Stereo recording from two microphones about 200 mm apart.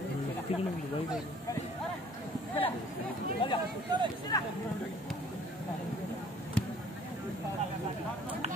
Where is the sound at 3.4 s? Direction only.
25° left (ahead or behind).